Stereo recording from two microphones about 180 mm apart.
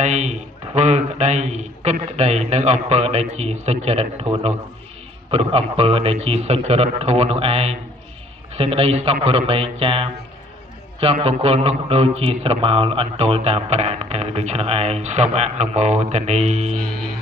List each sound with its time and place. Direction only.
0.0 s a man's voice: 40° right (ahead or behind)